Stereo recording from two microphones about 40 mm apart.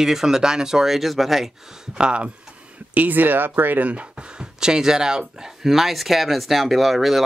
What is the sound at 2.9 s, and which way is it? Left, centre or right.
Speech, right.